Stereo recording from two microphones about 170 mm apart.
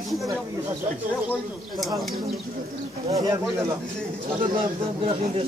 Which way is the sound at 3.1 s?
20° right (ahead or behind).